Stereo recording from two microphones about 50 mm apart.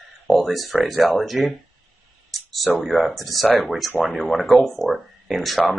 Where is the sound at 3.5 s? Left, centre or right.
Right.